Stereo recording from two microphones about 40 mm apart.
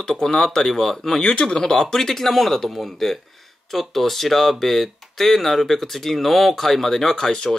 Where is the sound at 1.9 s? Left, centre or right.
Centre.